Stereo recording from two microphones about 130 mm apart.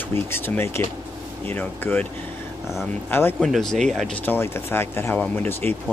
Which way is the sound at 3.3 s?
Centre (ahead or behind).